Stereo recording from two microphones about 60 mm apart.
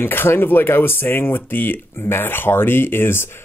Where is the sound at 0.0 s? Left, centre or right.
Left.